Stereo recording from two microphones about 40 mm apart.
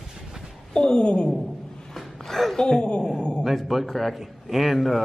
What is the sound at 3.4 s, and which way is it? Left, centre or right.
A man's voice, centre.